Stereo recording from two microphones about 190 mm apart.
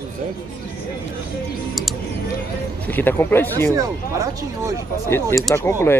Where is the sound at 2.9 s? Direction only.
10° left (ahead or behind).